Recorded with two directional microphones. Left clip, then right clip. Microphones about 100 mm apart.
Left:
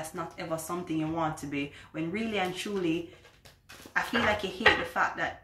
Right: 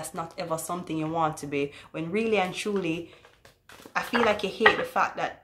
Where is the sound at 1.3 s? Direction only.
35° right (ahead or behind).